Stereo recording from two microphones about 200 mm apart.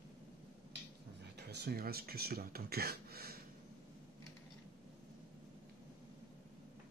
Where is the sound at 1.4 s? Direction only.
55° right (ahead or behind).